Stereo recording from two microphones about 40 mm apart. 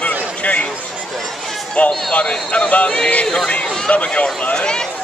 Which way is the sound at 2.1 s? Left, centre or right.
Left.